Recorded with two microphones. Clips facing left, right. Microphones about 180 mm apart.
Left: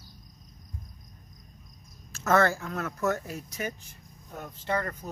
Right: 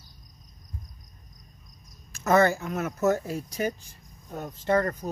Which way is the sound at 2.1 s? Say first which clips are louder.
Right 3 dB; 15° right (ahead or behind).